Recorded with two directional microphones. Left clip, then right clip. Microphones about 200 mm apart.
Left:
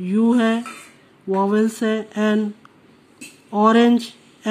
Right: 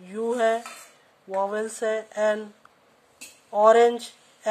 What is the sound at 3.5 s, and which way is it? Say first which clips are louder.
Speech: left 1 dB; 40° left (ahead or behind).